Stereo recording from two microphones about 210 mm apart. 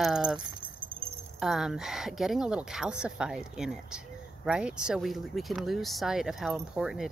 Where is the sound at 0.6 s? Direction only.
25° right (ahead or behind).